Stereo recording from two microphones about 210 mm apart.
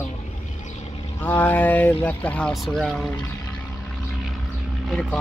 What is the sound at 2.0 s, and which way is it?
Speech, 5° left (ahead or behind).